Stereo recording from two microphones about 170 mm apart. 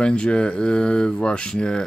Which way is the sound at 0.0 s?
5° left (ahead or behind).